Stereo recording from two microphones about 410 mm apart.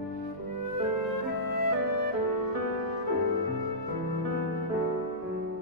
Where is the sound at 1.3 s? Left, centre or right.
Left.